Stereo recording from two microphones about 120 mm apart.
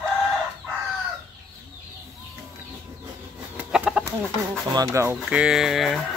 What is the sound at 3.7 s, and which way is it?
Chicken, 10° right (ahead or behind).